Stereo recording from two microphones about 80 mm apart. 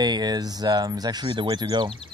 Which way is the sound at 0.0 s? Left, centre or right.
Right.